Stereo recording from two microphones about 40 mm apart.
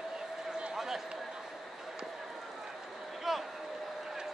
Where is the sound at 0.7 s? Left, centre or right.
Centre.